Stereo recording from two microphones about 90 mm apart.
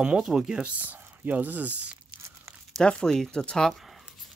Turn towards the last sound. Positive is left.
turn(degrees=0)  # may be behind; listen again after turning